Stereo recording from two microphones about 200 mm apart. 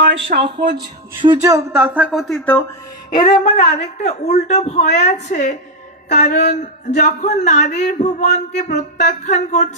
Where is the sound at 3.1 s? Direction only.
25° left (ahead or behind).